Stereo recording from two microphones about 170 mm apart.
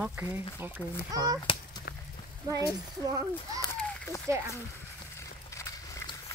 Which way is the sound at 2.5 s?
20° right (ahead or behind).